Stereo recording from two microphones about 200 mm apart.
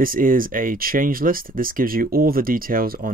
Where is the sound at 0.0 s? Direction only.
45° right (ahead or behind).